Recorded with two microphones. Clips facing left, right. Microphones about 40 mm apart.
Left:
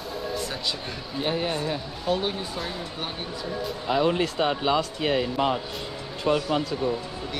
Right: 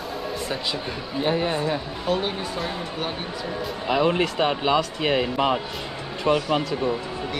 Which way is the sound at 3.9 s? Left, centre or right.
Right.